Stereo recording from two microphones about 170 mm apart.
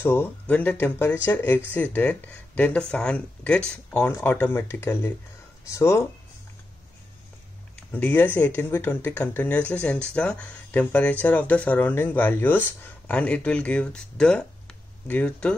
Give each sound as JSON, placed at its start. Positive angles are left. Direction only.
{"t": 0.0, "sound": "speech", "side_deg": 15}
{"t": 7.9, "sound": "speech", "side_deg": 10}